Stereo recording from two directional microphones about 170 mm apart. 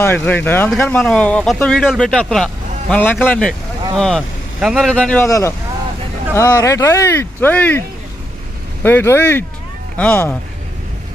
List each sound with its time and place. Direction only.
0.0 s speech: 10° left (ahead or behind)
8.8 s speech: 15° left (ahead or behind)